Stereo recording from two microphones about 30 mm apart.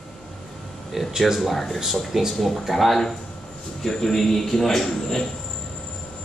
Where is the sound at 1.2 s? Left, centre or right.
Centre.